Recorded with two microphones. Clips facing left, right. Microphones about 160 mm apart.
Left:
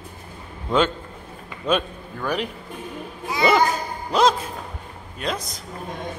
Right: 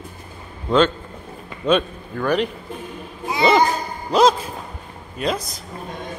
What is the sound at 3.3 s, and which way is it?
Speech, 30° right (ahead or behind).